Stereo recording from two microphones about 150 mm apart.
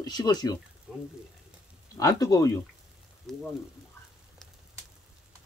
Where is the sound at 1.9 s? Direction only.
25° left (ahead or behind).